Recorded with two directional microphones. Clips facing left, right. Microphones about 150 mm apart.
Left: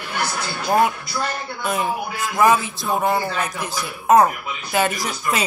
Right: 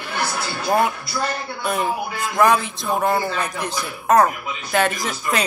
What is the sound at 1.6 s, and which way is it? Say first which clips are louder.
Speech: even; centre (ahead or behind).